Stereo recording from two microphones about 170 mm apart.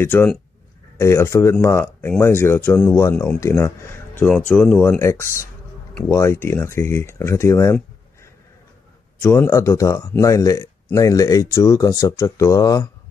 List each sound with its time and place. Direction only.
0.0 s speech: 15° left (ahead or behind)
9.2 s speech: 15° left (ahead or behind)